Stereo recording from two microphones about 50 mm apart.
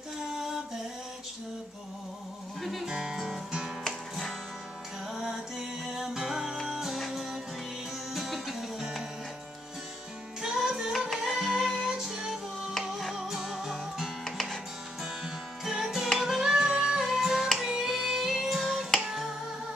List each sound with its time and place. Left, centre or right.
2.6 s music: centre
2.9 s music: centre
5.1 s music: centre
10.4 s music: centre
11.3 s music: centre
12.7 s music: centre
13.1 s music: centre
14.2 s music: centre
15.0 s music: centre
17.6 s a sound: centre